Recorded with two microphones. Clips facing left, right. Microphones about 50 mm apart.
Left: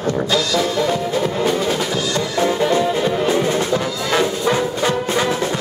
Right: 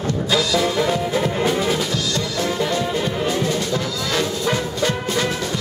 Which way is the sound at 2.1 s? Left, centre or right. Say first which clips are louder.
Left 6 dB; centre.